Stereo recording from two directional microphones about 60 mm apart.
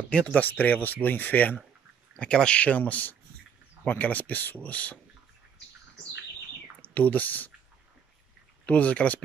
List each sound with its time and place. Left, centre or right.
0.1 s speech: centre
0.4 s speech: left
2.1 s speech: centre
6.8 s speech: left
8.6 s speech: left